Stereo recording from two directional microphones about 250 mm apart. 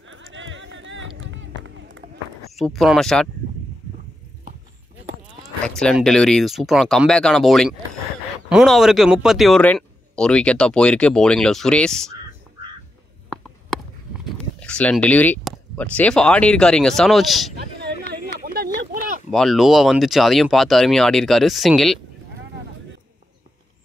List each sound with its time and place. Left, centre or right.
0.0 s run: right
2.5 s speech: centre
5.8 s speech: centre
14.6 s speech: centre
18.5 s a sound: right
19.3 s speech: centre